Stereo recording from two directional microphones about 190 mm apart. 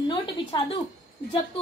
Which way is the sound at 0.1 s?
30° left (ahead or behind).